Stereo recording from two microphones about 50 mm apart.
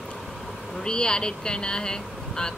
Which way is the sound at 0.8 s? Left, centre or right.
Centre.